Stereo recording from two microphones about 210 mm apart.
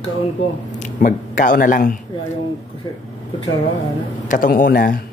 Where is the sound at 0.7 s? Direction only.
40° left (ahead or behind).